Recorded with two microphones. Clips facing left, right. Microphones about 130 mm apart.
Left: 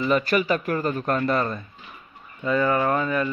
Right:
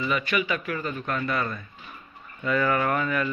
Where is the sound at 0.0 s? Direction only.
35° left (ahead or behind).